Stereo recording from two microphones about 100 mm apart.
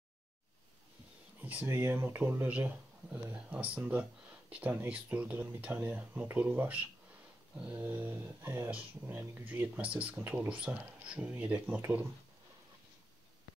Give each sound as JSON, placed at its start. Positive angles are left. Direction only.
{"t": 1.4, "sound": "speech", "side_deg": -15}